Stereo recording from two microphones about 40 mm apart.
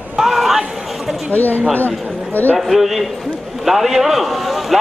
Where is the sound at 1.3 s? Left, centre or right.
Left.